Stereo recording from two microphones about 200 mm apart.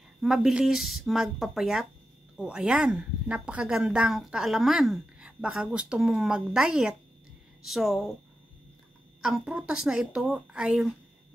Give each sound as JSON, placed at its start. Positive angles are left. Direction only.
{"t": 0.2, "sound": "speech", "side_deg": 0}
{"t": 9.2, "sound": "speech", "side_deg": -5}